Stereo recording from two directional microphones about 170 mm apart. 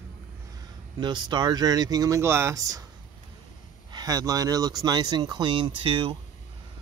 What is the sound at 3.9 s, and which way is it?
Speech, 25° right (ahead or behind).